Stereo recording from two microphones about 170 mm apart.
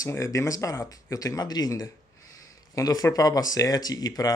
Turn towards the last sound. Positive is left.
turn(degrees=20)  # may be behind; listen again after turning